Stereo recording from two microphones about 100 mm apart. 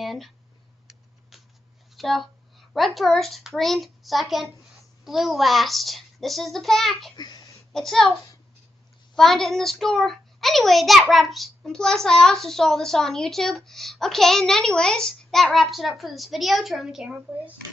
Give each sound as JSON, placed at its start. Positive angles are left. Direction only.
{"t": 0.0, "sound": "a sound", "side_deg": 0}
{"t": 2.0, "sound": "a child's voice", "side_deg": 0}
{"t": 7.2, "sound": "speech", "side_deg": 45}
{"t": 7.7, "sound": "a child's voice", "side_deg": 5}
{"t": 9.1, "sound": "a child's voice", "side_deg": 5}